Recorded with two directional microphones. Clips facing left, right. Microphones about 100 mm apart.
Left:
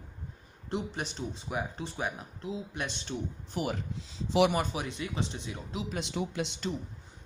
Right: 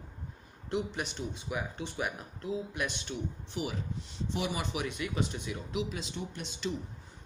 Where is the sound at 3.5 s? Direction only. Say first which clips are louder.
Left 4 dB; 50° left (ahead or behind).